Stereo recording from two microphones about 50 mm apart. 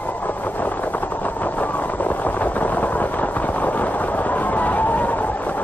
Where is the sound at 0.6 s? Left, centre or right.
Left.